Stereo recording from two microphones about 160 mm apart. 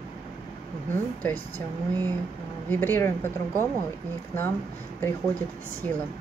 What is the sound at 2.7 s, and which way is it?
Speech, 15° left (ahead or behind).